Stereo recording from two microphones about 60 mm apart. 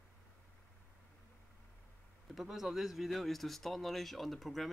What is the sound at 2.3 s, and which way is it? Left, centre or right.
Speech, centre.